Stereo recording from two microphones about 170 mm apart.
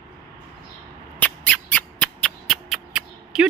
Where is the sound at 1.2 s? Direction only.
10° left (ahead or behind).